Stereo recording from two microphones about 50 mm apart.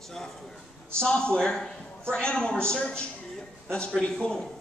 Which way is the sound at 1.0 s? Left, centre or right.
Centre.